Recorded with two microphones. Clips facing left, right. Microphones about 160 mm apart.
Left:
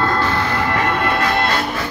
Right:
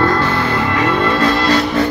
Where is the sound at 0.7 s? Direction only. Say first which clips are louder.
Right 4 dB; 55° left (ahead or behind).